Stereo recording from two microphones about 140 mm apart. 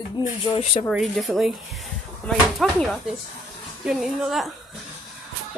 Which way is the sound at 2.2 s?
10° left (ahead or behind).